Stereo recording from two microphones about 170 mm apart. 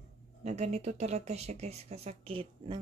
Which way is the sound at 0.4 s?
40° right (ahead or behind).